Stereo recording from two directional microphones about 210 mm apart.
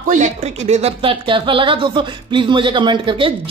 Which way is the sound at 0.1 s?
35° right (ahead or behind).